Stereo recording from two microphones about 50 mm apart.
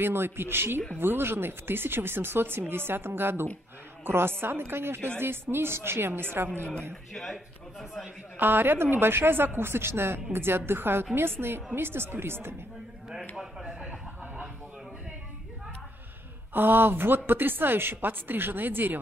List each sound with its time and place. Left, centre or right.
0.0 s speech: right
8.4 s speech: right
13.4 s a sound: centre
16.5 s speech: right